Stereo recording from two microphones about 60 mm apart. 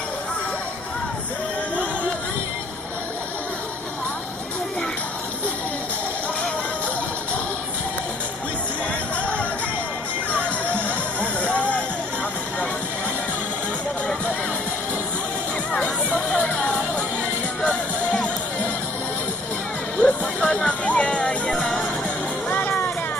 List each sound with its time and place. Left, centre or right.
10.8 s music: left
15.8 s music: left
17.6 s music: centre
20.0 s music: centre
22.5 s music: left